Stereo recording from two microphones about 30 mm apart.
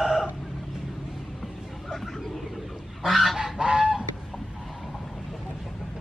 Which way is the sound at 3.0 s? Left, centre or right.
Centre.